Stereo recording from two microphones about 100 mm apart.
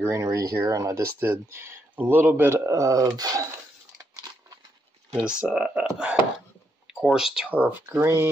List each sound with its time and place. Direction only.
0.1 s speech: 35° right (ahead or behind)
5.4 s speech: 10° right (ahead or behind)
7.5 s speech: 20° right (ahead or behind)